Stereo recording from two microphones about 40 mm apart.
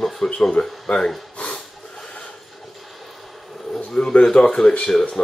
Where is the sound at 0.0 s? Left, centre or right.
Centre.